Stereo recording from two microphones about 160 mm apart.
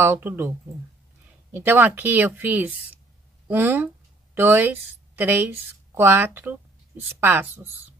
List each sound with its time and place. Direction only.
0.0 s speech: 15° right (ahead or behind)
1.5 s a woman's voice: 10° right (ahead or behind)